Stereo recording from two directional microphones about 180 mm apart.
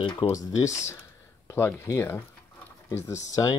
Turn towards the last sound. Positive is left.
turn(degrees=15)  # may be behind; listen again after turning